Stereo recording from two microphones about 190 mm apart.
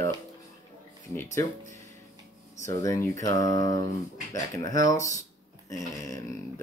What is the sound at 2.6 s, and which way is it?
Speech, 15° left (ahead or behind).